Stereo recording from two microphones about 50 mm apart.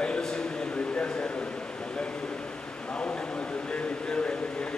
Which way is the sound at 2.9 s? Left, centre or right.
Left.